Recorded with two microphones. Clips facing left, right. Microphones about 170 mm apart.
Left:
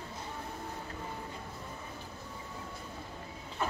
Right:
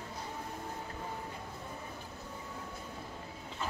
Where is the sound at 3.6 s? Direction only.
65° left (ahead or behind).